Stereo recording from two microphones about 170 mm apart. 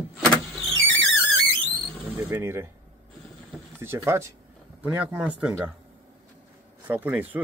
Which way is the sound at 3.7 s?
15° right (ahead or behind).